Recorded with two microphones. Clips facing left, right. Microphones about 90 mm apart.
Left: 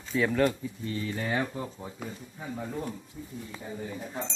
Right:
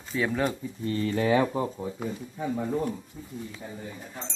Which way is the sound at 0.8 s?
45° right (ahead or behind).